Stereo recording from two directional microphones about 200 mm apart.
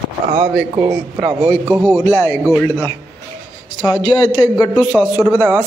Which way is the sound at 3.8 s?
20° left (ahead or behind).